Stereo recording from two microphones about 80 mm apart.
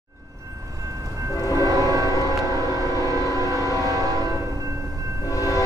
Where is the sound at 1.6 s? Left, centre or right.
Right.